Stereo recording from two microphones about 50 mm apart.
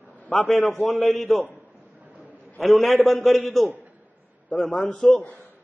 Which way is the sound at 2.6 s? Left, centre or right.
Centre.